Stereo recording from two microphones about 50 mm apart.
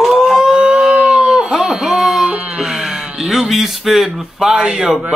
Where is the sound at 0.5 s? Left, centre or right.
Centre.